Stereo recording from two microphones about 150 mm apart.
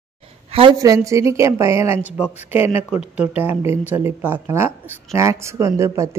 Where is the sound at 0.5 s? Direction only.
40° right (ahead or behind).